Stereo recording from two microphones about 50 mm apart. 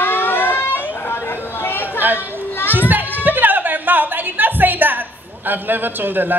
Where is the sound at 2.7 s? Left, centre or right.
Right.